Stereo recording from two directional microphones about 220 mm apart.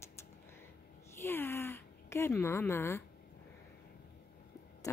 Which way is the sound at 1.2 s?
10° left (ahead or behind).